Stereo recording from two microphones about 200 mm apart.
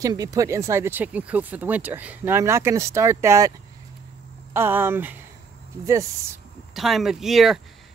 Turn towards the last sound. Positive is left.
turn(degrees=0)  # may be behind; listen again after turning